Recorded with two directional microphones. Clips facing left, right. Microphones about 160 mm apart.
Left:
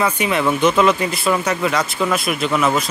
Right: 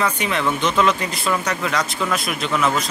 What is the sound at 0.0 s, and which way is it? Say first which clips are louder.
Speech: left 3 dB; 5° left (ahead or behind).